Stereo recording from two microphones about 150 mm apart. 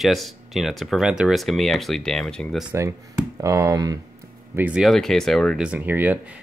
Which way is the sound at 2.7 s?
15° right (ahead or behind).